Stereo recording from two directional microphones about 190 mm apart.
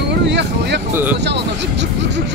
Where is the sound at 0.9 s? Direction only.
10° right (ahead or behind).